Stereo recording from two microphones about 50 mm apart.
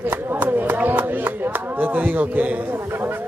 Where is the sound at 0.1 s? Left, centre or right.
Right.